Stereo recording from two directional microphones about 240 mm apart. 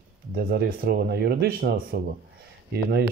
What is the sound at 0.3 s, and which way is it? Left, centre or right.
Speech, right.